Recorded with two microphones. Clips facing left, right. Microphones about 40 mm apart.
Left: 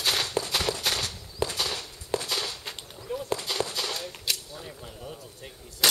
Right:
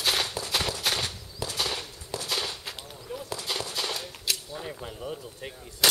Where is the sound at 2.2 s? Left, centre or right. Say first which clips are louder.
Even; centre.